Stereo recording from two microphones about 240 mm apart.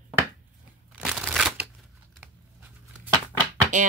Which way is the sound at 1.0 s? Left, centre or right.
Centre.